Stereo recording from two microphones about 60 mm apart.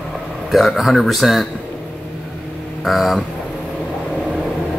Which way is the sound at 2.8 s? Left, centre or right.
Centre.